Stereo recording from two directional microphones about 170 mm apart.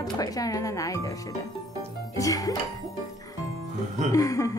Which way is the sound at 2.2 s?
20° left (ahead or behind).